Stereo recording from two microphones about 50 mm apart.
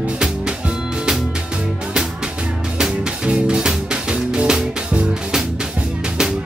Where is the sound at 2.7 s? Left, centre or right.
Centre.